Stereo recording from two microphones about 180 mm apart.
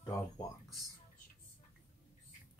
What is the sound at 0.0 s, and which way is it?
Speech, 20° left (ahead or behind).